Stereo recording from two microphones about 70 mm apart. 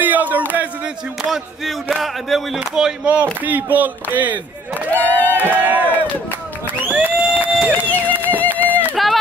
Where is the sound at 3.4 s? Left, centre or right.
Right.